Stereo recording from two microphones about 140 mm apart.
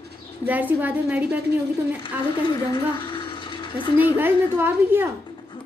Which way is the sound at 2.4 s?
35° left (ahead or behind).